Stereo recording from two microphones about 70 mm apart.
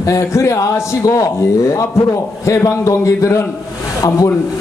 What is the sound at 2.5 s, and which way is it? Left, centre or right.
Speech, left.